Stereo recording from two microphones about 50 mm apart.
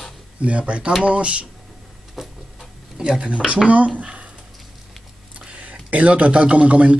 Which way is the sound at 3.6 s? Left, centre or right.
Right.